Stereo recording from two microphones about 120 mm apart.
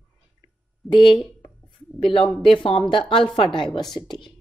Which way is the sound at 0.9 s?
45° left (ahead or behind).